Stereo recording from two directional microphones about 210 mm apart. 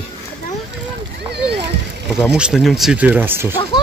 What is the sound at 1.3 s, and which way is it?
Splash, 50° right (ahead or behind).